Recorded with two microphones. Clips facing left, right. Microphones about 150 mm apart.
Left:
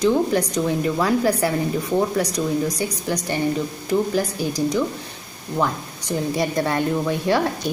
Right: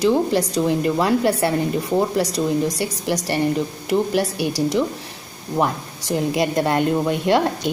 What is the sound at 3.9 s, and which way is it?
Speech, 85° right.